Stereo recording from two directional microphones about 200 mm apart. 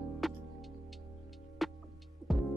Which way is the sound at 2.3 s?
Centre (ahead or behind).